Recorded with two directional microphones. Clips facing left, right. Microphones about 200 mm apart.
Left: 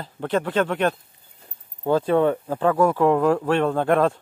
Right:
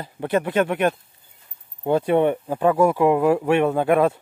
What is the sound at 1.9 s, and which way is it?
Speech, 20° right (ahead or behind).